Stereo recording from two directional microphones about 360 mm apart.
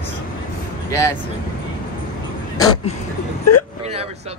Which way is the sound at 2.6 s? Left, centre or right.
Centre.